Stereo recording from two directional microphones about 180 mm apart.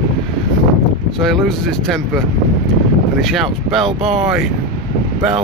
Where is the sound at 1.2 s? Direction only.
Centre (ahead or behind).